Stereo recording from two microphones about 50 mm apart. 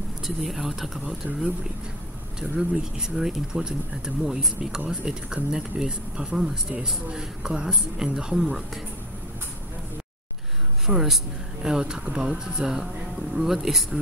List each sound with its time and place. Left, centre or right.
0.2 s speech: centre
1.0 s speech: right
2.5 s speech: centre
10.9 s speech: centre
11.6 s speech: centre